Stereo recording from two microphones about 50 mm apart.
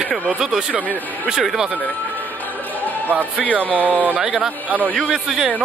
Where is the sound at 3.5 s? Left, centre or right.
Right.